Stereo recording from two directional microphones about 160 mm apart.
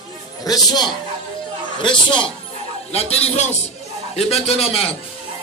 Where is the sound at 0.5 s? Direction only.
25° left (ahead or behind).